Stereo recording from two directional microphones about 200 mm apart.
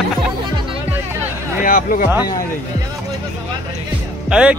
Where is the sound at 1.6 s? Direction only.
45° left (ahead or behind).